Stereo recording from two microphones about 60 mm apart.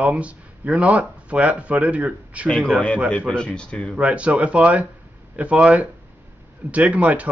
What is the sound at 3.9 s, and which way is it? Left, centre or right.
Speech, right.